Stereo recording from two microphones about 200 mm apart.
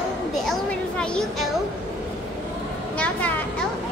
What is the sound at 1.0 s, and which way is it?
Speech, 5° left (ahead or behind).